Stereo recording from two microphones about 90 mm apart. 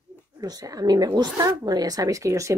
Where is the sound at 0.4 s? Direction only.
40° right (ahead or behind).